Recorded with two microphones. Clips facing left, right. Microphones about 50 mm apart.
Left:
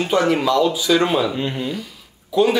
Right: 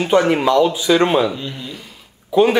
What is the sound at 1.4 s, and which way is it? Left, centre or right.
Speech, left.